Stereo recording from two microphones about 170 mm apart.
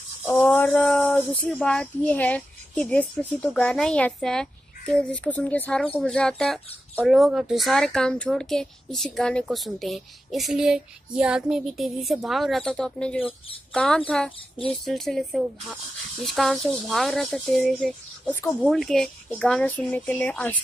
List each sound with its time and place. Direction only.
0.3 s speech: 5° left (ahead or behind)